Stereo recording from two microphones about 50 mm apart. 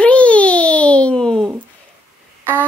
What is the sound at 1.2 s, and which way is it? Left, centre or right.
Speech, centre.